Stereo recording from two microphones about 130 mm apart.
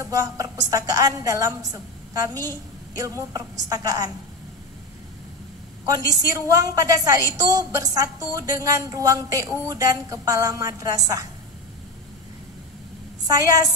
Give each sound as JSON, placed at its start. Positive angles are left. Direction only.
{"t": 0.0, "sound": "a woman's voice", "side_deg": -25}
{"t": 5.9, "sound": "a woman's voice", "side_deg": -25}